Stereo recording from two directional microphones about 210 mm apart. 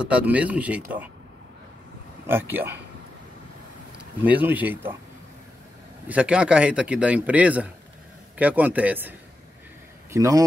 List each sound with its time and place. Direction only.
0.0 s speech: 5° right (ahead or behind)
2.2 s speech: 10° right (ahead or behind)
4.2 s speech: 10° right (ahead or behind)
6.0 s a man's voice: 5° right (ahead or behind)
10.1 s speech: 15° right (ahead or behind)